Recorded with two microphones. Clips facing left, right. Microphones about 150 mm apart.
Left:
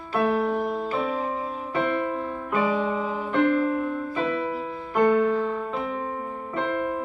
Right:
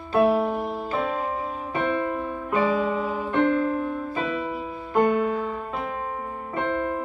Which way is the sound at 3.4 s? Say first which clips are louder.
Left 1 dB; 25° right (ahead or behind).